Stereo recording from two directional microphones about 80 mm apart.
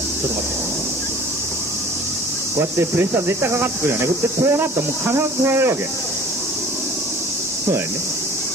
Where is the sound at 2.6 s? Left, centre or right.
Right.